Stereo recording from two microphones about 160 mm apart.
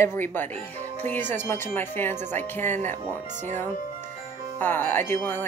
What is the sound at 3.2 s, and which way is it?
Speech, 50° right (ahead or behind).